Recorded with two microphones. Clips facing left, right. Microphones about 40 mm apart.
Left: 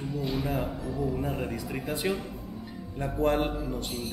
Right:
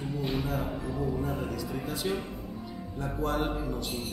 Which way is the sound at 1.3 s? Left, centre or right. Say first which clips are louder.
Left 1 dB; left.